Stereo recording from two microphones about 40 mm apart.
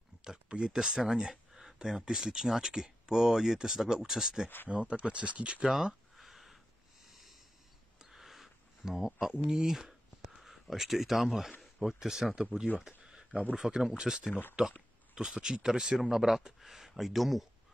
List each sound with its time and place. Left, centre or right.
0.5 s speech: centre
4.6 s speech: right
6.1 s a sound: centre
9.7 s speech: centre
12.5 s speech: left
12.8 s a sound: centre
13.6 s speech: centre
14.6 s speech: right; by 17.5 s centre